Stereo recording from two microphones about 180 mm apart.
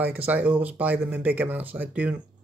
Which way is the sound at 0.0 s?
10° right (ahead or behind).